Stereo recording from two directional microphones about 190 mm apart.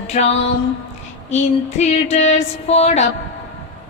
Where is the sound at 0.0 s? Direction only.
35° left (ahead or behind).